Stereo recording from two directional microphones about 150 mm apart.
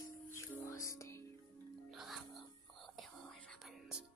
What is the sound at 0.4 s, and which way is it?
Music, 20° left (ahead or behind).